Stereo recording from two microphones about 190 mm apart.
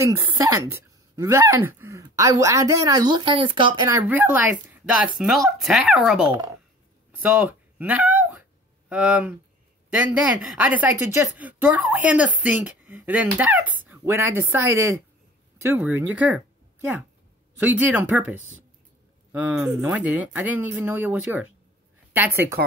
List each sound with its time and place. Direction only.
0.0 s speech: 15° right (ahead or behind)
3.9 s speech: 10° right (ahead or behind)
7.2 s a sound: 5° right (ahead or behind)
9.8 s speech: 5° right (ahead or behind)
17.6 s speech: 10° right (ahead or behind)